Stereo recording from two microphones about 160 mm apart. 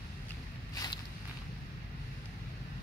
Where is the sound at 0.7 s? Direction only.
25° left (ahead or behind).